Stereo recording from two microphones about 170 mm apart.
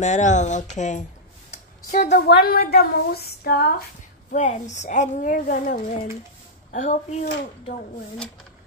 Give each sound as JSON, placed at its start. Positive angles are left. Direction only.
{"t": 0.0, "sound": "a woman's voice", "side_deg": 45}
{"t": 1.9, "sound": "female singing", "side_deg": 60}
{"t": 4.3, "sound": "a woman's voice", "side_deg": 45}
{"t": 6.7, "sound": "a woman's voice", "side_deg": 45}